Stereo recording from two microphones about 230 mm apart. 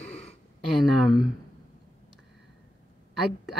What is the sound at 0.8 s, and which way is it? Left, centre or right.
Speech, centre.